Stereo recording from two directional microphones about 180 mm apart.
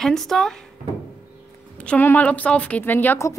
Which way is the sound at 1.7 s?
10° left (ahead or behind).